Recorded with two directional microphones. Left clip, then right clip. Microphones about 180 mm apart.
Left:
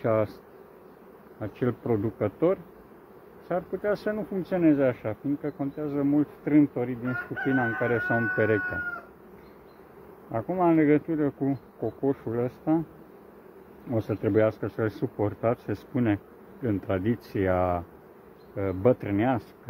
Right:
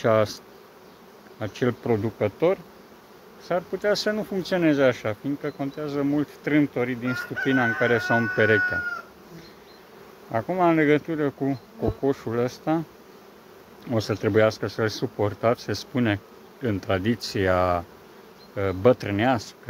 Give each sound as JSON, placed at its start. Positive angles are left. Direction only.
{"t": 0.0, "sound": "insect", "side_deg": -45}
{"t": 1.4, "sound": "speech", "side_deg": -40}
{"t": 10.3, "sound": "speech", "side_deg": -35}
{"t": 13.9, "sound": "speech", "side_deg": -30}